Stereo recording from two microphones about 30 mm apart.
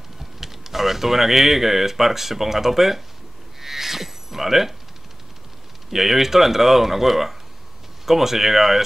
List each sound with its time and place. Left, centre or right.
0.2 s speech: centre
3.6 s a sound: centre
5.9 s speech: centre